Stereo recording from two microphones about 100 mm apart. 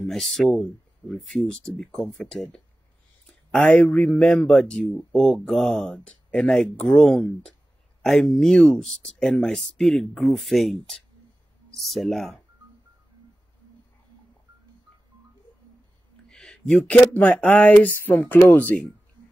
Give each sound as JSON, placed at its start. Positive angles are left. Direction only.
{"t": 0.0, "sound": "speech", "side_deg": 0}
{"t": 16.3, "sound": "speech", "side_deg": 10}